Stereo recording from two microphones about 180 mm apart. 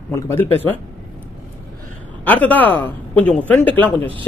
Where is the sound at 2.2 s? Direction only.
10° left (ahead or behind).